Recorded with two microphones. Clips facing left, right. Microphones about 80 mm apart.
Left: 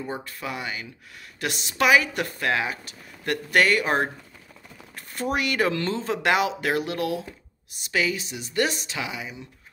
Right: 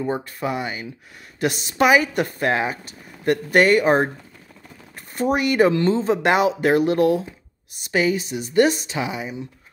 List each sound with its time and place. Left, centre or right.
0.0 s speech: right